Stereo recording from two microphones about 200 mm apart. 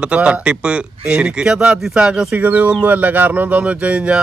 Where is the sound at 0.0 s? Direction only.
5° right (ahead or behind).